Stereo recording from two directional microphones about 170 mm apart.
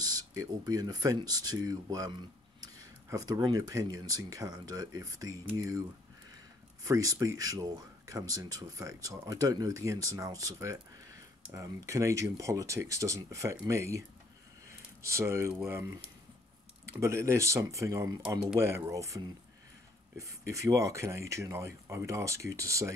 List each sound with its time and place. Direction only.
0.0 s speech: 20° right (ahead or behind)
6.8 s speech: 20° right (ahead or behind)
15.0 s speech: 15° right (ahead or behind)